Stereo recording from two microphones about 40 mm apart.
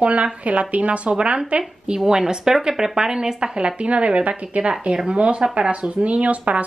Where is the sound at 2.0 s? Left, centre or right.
Centre.